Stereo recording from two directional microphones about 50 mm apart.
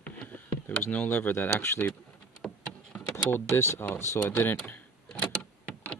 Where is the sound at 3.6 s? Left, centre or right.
Left.